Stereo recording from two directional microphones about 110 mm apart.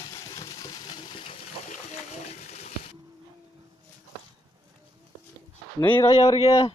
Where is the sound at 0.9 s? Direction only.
45° left (ahead or behind).